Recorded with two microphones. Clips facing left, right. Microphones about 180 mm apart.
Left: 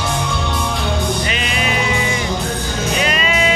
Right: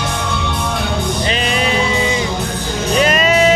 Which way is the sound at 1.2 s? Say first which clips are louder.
Right 4 dB; 35° right (ahead or behind).